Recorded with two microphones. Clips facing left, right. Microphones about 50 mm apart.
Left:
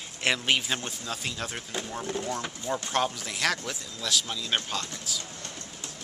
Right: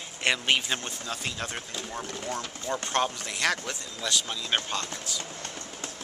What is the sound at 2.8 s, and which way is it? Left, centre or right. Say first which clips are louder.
Speech: right 1 dB; centre.